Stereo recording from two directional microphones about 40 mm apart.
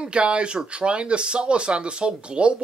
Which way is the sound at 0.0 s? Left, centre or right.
Right.